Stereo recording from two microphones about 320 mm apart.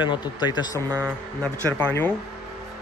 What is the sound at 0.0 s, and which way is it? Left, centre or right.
Speech, centre.